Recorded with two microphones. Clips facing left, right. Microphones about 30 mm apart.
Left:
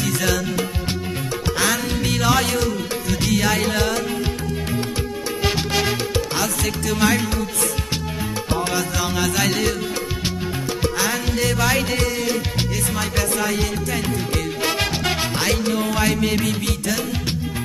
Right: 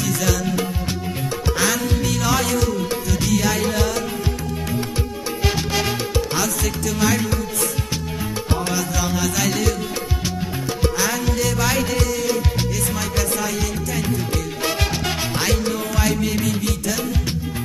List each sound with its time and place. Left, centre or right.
0.0 s music: left
1.9 s music: left
6.3 s music: left
8.6 s music: left
11.2 s music: left